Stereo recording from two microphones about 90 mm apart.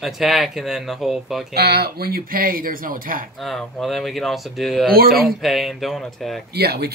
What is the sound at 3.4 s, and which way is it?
Speech, centre (ahead or behind).